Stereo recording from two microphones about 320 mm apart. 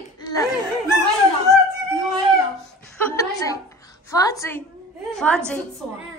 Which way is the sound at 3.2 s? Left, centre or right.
Centre.